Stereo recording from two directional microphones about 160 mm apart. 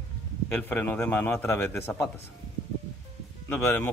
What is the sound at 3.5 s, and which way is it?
Speech, 15° left (ahead or behind).